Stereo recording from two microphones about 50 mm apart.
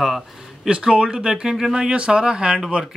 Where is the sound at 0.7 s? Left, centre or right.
Centre.